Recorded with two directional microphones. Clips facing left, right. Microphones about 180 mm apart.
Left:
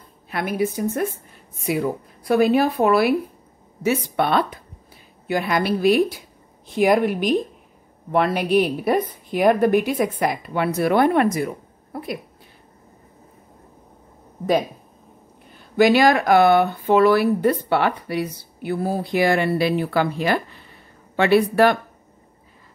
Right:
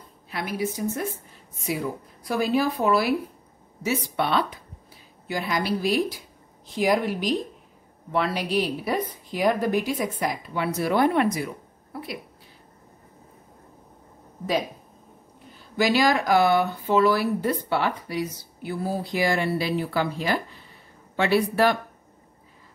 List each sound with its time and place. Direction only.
0.3 s speech: 55° left (ahead or behind)
15.7 s speech: 60° left (ahead or behind)